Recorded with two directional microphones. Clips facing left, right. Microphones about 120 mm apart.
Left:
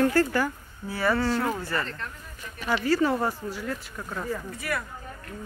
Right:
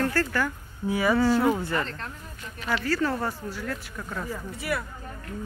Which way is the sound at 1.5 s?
20° right (ahead or behind).